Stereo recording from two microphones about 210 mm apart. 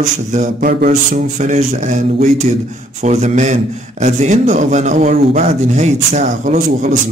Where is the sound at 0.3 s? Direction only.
40° right (ahead or behind).